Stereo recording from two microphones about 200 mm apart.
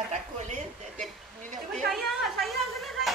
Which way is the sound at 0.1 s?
40° right (ahead or behind).